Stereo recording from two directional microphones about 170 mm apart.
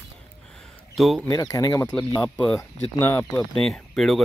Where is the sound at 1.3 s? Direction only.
20° left (ahead or behind).